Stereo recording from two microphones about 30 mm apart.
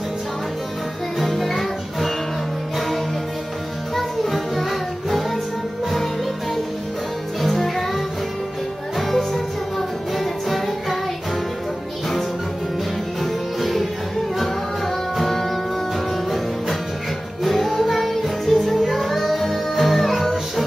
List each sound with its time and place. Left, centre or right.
1.2 s music: centre
3.9 s music: centre
7.4 s music: centre
13.2 s music: centre
17.4 s music: centre